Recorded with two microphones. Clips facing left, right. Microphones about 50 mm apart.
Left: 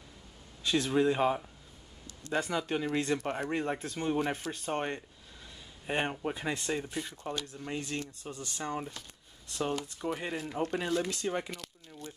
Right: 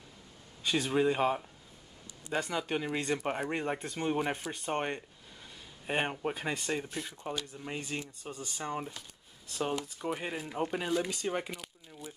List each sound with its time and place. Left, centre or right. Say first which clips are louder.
0.7 s speech: left 1 dB; centre
2.6 s speech: left 2 dB; centre
4.5 s a sound: even; centre
6.2 s speech: even; centre